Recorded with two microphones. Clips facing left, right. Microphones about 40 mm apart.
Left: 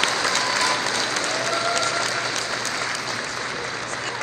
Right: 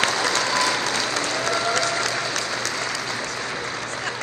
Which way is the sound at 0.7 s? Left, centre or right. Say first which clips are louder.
Even; right.